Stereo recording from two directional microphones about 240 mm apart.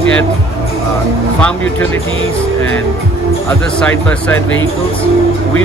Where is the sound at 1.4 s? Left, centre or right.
Centre.